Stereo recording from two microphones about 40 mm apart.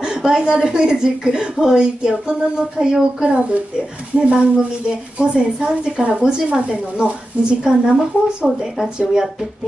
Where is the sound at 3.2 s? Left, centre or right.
Right.